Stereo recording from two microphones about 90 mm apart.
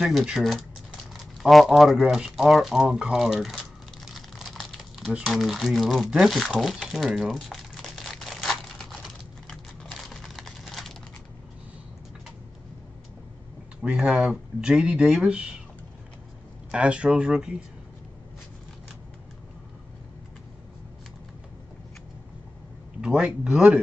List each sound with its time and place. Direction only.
0.0 s speech: centre (ahead or behind)
1.4 s a sound: centre (ahead or behind)
5.2 s speech: centre (ahead or behind)
6.1 s crumpling: centre (ahead or behind)
9.9 s typing: centre (ahead or behind)
13.8 s speech: 10° right (ahead or behind)
16.7 s speech: 10° right (ahead or behind)
22.9 s speech: 10° right (ahead or behind)